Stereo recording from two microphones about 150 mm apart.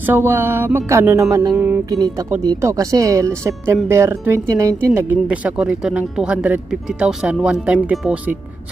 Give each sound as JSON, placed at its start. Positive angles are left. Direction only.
{"t": 0.0, "sound": "speech", "side_deg": -15}